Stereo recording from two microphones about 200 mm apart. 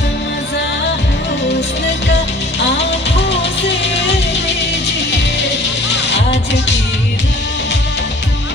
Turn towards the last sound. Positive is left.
turn(degrees=60)  # may be behind; listen again after turning